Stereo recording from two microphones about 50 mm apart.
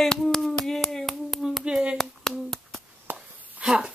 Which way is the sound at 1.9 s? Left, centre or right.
Centre.